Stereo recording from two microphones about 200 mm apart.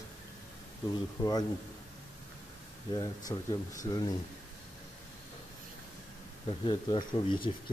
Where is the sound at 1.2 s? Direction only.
20° left (ahead or behind).